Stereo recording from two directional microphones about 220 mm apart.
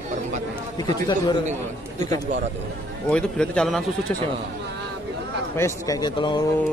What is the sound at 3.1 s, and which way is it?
Speech, 5° left (ahead or behind).